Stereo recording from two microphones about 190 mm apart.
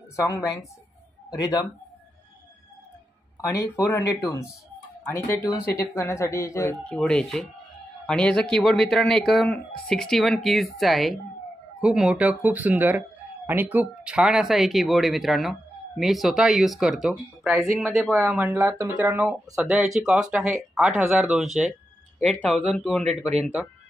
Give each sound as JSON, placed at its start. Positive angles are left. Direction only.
{"t": 0.1, "sound": "speech", "side_deg": 15}
{"t": 3.5, "sound": "speech", "side_deg": 15}